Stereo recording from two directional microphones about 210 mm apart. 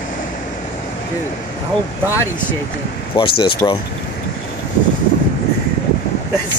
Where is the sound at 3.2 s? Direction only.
25° left (ahead or behind).